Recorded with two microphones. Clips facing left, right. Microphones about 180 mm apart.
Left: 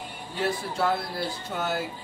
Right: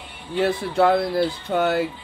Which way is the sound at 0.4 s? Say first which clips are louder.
Right 8 dB; 60° right (ahead or behind).